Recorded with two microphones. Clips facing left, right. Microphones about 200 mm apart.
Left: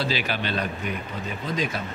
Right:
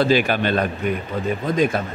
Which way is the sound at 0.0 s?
50° right (ahead or behind).